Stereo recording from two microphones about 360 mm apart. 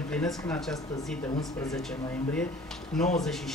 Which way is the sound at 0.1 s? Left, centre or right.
Centre.